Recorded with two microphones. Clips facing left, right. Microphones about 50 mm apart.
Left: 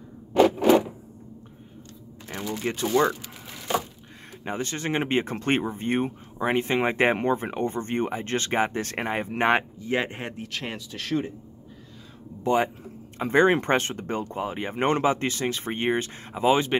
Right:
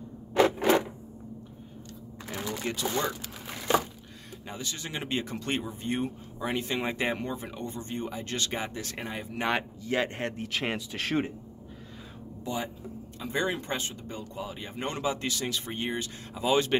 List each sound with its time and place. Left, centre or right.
2.6 s speech: left
4.5 s speech: left; by 10.3 s centre
10.5 s speech: centre
11.0 s speech: right
12.4 s speech: left